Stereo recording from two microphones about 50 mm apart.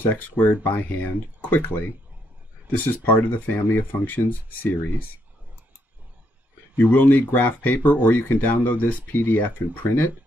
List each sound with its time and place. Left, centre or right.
0.0 s speech: left
6.8 s speech: left